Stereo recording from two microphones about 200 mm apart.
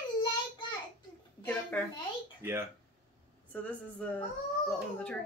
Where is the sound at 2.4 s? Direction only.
15° right (ahead or behind).